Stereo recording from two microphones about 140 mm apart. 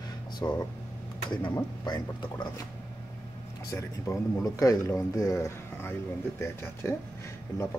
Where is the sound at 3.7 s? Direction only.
20° left (ahead or behind).